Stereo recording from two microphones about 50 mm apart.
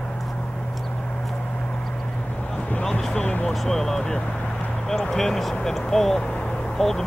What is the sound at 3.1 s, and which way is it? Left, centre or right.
Vehicle, left.